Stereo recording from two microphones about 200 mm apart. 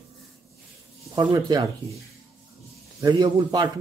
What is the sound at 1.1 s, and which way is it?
Speech, 20° right (ahead or behind).